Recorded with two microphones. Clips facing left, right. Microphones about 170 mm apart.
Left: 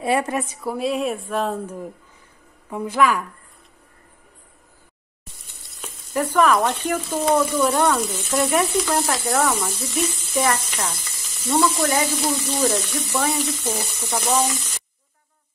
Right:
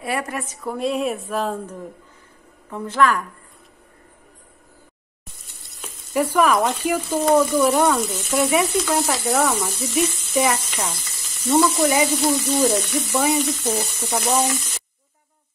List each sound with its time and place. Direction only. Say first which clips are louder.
0.0 s a woman's voice: left 5 dB; 25° left (ahead or behind)
0.5 s a woman's voice: even; 10° left (ahead or behind)
5.8 s speech: right 2 dB; 10° right (ahead or behind)
9.0 s sizzle: right 1 dB; 5° right (ahead or behind)
12.2 s speech: right 3 dB; 5° right (ahead or behind)
13.7 s sizzle: right 2 dB; 10° right (ahead or behind)
14.2 s speech: even; 5° right (ahead or behind)